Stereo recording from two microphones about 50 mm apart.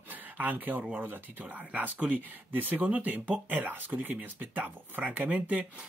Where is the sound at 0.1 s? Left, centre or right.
Right.